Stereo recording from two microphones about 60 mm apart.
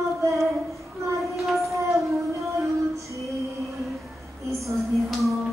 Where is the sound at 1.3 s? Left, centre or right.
Centre.